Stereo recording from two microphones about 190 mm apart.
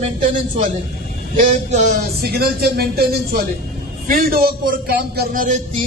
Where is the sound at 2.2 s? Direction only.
55° right (ahead or behind).